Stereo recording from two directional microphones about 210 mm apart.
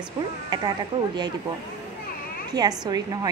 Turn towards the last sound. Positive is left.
turn(degrees=-20)  # may be behind; listen again after turning